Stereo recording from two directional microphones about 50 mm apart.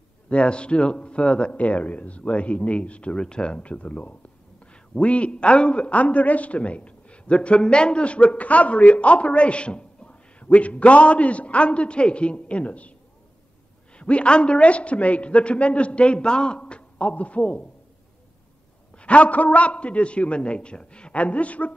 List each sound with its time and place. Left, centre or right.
0.3 s a man's voice: left
13.9 s a man's voice: left
18.9 s a man's voice: left